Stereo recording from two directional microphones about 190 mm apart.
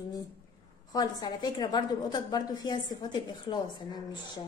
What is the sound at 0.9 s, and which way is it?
A woman's voice, 20° left (ahead or behind).